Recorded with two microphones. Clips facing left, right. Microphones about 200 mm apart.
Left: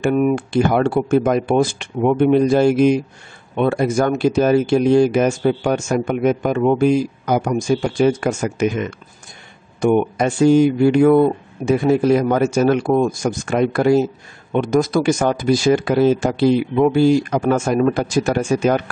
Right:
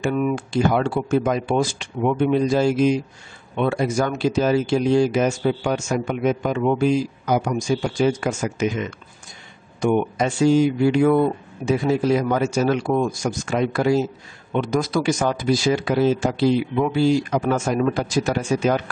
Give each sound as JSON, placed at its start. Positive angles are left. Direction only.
{"t": 0.0, "sound": "speech", "side_deg": 50}